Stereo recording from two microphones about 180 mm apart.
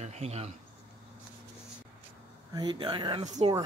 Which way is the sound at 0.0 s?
35° right (ahead or behind).